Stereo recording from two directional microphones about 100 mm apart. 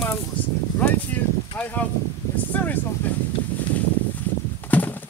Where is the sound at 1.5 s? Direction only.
15° left (ahead or behind).